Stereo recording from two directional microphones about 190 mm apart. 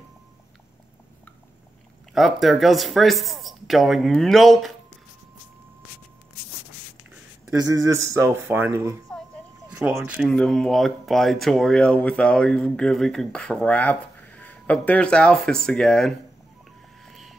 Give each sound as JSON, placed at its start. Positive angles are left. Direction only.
{"t": 2.1, "sound": "speech", "side_deg": 0}
{"t": 7.4, "sound": "speech", "side_deg": -15}
{"t": 10.2, "sound": "speech", "side_deg": 5}
{"t": 17.0, "sound": "vehicle", "side_deg": 0}